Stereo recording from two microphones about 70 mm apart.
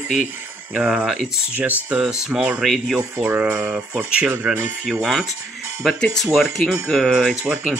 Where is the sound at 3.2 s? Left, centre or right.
Right.